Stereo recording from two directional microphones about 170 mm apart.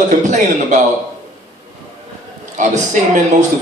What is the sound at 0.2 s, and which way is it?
Speech, 45° right (ahead or behind).